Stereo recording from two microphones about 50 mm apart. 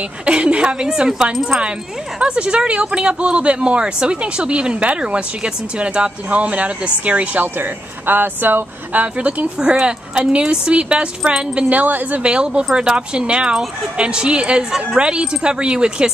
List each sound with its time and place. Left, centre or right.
0.0 s speech: right
7.4 s speech: right
9.0 s speech: right
12.2 s speech: right